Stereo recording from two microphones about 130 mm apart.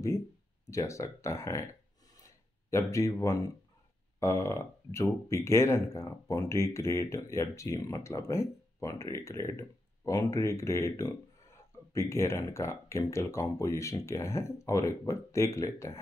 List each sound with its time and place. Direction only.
0.7 s speech: 25° left (ahead or behind)